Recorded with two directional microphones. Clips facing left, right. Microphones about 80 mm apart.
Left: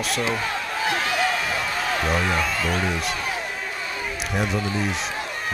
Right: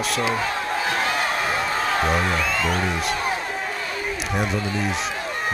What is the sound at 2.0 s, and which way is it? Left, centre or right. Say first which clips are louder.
Speech: even; right.